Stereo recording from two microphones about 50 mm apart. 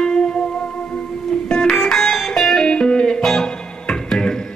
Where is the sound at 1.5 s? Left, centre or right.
Centre.